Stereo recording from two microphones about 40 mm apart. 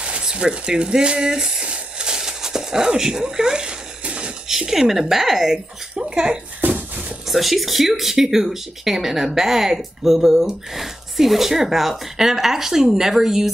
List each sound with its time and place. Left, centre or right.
0.0 s speech: right
1.6 s a sound: right
4.5 s speech: centre
5.9 s speech: right
6.7 s a sound: right
7.2 s speech: centre